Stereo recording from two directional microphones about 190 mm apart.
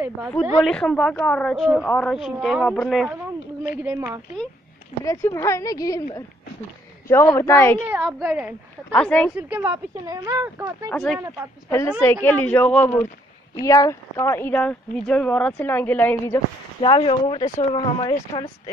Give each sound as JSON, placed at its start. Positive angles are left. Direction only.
{"t": 0.7, "sound": "a woman's voice", "side_deg": 5}
{"t": 3.8, "sound": "speech", "side_deg": -15}
{"t": 5.0, "sound": "speech", "side_deg": 15}
{"t": 7.1, "sound": "speech", "side_deg": 15}
{"t": 8.0, "sound": "a woman's voice", "side_deg": 0}
{"t": 9.5, "sound": "speech", "side_deg": -10}
{"t": 10.9, "sound": "a woman's voice", "side_deg": 0}
{"t": 16.8, "sound": "speech", "side_deg": 30}